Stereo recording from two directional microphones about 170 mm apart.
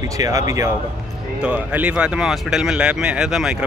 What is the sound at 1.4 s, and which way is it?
Speech, 10° right (ahead or behind).